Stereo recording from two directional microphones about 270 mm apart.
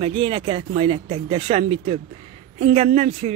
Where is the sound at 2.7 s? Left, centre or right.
Right.